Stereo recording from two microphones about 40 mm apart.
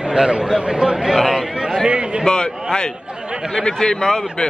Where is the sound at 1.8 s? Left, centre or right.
Right.